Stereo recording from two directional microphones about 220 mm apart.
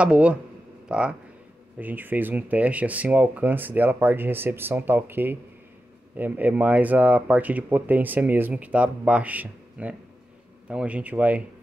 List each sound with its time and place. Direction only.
0.0 s speech: 5° right (ahead or behind)